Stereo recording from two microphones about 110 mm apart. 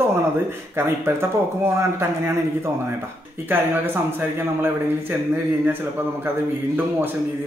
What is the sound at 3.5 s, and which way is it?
Speech, 20° right (ahead or behind).